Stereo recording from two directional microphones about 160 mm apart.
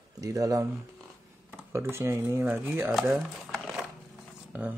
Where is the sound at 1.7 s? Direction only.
15° right (ahead or behind).